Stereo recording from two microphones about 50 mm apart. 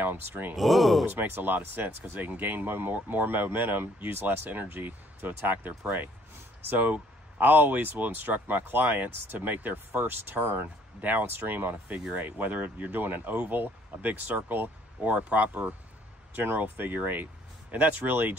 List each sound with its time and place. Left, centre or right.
0.0 s speech: right
0.6 s speech: centre
1.0 s speech: right